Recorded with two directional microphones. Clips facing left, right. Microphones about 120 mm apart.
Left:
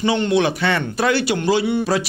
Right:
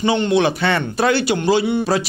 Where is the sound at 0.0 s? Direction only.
25° right (ahead or behind).